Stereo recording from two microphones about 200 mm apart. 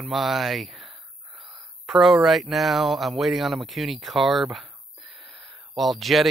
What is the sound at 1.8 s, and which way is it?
Speech, centre (ahead or behind).